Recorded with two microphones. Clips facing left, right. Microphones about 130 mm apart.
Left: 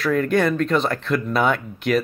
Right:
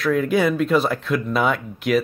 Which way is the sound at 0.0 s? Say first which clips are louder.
Even; centre (ahead or behind).